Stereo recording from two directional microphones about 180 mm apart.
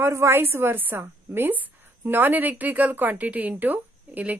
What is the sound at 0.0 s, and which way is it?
A woman's voice, 15° right (ahead or behind).